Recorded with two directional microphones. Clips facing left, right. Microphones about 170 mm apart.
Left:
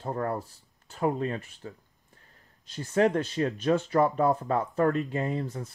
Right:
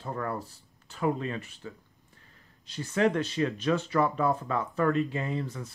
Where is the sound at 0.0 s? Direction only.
35° left (ahead or behind).